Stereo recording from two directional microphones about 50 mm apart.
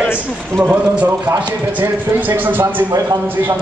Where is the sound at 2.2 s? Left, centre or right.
Right.